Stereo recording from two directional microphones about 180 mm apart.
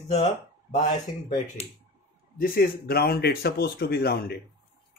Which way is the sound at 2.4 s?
55° left (ahead or behind).